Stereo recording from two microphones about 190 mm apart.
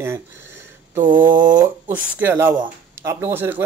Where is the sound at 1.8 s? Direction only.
10° right (ahead or behind).